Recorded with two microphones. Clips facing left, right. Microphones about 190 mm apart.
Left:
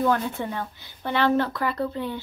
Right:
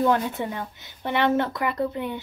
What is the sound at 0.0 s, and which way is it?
A woman's voice, 20° right (ahead or behind).